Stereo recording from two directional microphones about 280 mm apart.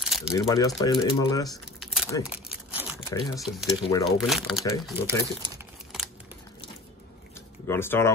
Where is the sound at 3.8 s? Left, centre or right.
Centre.